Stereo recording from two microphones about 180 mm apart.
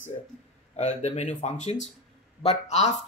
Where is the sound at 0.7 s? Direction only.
40° left (ahead or behind).